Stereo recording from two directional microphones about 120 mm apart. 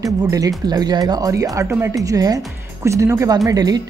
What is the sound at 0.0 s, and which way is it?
Speech, 30° right (ahead or behind).